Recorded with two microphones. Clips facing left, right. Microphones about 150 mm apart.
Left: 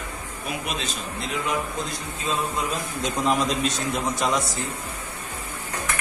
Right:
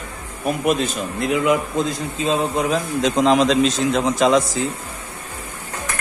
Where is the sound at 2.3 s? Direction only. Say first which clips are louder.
Right 7 dB; 90° right.